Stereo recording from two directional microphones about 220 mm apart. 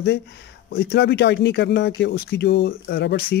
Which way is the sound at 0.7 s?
50° left (ahead or behind).